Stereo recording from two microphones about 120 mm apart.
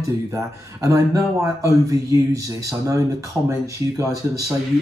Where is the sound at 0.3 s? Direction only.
25° right (ahead or behind).